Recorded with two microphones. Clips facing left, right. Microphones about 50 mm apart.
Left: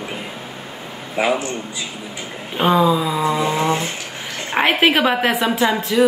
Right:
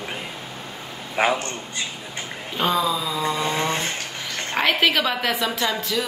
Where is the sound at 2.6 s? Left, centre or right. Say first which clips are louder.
Left 7 dB; left.